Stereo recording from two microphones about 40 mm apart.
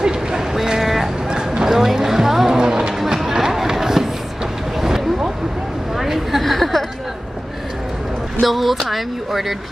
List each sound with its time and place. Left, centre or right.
0.0 s vehicle: centre
1.3 s a sound: centre
2.0 s music: centre
2.5 s music: right
2.9 s music: centre
4.7 s vehicle: centre
5.9 s a sound: centre
6.4 s chatter: centre
8.4 s speech: centre